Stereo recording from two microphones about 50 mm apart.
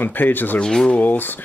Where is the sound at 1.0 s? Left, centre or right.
Left.